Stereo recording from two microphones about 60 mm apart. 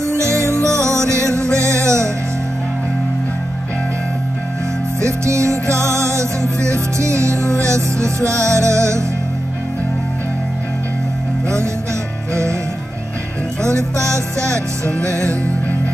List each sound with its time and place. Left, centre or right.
0.0 s music: right
5.0 s music: right
11.4 s music: right
13.7 s music: right
14.5 s music: centre